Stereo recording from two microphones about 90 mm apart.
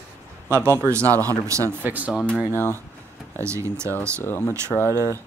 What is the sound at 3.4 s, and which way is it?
Speech, 30° right (ahead or behind).